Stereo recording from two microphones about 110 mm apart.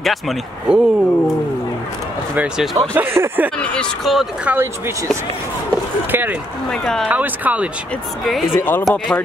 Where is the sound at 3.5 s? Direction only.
10° left (ahead or behind).